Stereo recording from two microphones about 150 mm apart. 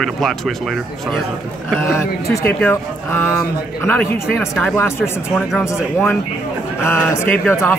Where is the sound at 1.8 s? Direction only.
15° left (ahead or behind).